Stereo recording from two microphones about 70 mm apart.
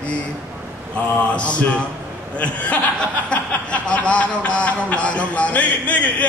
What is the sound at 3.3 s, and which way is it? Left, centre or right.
Speech, centre.